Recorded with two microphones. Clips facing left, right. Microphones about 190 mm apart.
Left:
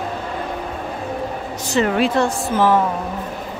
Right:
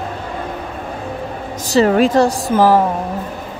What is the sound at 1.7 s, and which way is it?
Speech, 40° right (ahead or behind).